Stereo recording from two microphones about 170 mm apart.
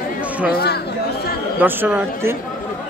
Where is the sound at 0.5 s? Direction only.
70° left (ahead or behind).